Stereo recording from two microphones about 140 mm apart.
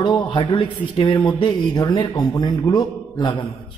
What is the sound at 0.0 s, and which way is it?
A man's voice, 35° left (ahead or behind).